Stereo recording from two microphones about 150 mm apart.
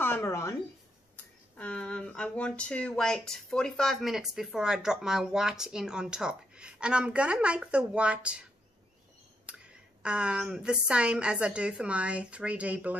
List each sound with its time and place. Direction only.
0.0 s a sound: 15° left (ahead or behind)
1.1 s speech: 10° left (ahead or behind); by 8.5 s 5° right (ahead or behind)
10.0 s a woman's voice: 5° right (ahead or behind)